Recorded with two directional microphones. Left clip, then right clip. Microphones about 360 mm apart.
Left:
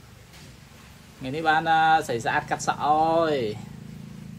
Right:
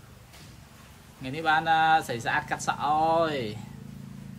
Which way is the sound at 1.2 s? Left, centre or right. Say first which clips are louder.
Left 2 dB; centre.